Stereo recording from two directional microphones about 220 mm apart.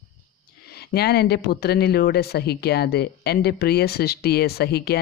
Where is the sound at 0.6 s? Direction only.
45° left (ahead or behind).